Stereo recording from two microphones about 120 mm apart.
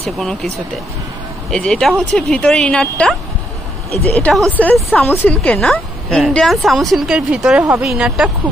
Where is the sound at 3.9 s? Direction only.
60° right (ahead or behind).